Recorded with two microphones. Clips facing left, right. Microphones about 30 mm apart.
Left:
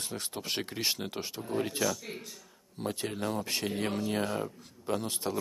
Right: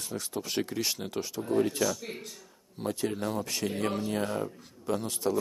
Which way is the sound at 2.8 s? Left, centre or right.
Centre.